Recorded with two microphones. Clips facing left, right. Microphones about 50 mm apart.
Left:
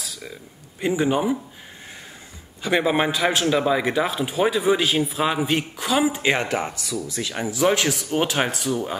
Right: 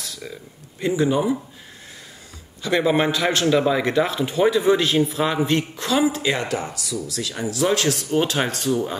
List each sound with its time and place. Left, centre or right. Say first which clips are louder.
0.0 s a sound: right 1 dB; centre
0.7 s speech: right 1 dB; left
2.6 s a man's voice: right 1 dB; centre